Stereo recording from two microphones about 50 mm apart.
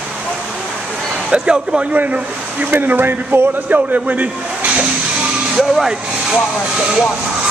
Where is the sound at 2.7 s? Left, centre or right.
Right.